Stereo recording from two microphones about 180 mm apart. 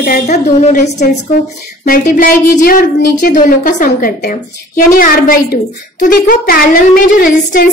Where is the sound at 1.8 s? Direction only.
50° left (ahead or behind).